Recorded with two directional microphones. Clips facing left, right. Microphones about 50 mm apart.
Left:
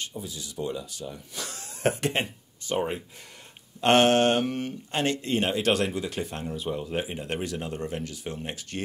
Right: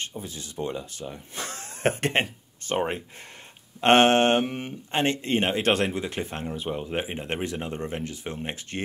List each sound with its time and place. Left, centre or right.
0.2 s speech: right
3.8 s speech: right